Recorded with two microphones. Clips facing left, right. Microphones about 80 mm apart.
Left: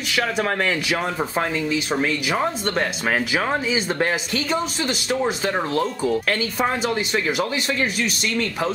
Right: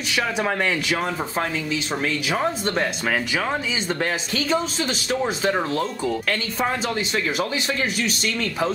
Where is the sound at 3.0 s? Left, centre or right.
Centre.